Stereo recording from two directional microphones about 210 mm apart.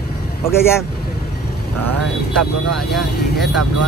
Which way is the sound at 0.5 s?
10° left (ahead or behind).